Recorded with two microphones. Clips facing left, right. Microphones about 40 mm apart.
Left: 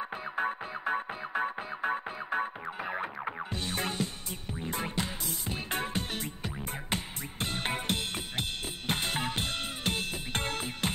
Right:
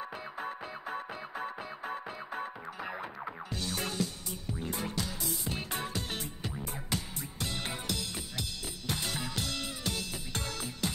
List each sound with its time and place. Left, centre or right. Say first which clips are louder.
0.2 s music: left 6 dB; left